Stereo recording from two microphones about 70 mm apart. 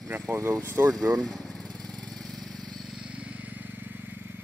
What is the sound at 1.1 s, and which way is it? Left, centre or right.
Speech, right.